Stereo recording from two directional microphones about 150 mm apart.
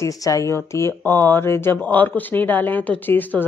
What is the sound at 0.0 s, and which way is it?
Speech, 20° left (ahead or behind).